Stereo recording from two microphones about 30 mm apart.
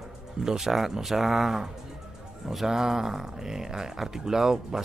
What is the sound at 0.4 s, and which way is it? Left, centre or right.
Speech, centre.